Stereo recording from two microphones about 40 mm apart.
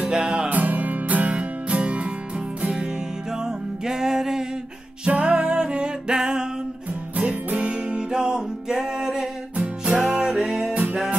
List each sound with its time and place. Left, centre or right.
0.0 s music: right
0.5 s music: right
2.7 s music: centre
5.0 s music: right
7.2 s music: right; by 10.7 s centre
10.7 s music: right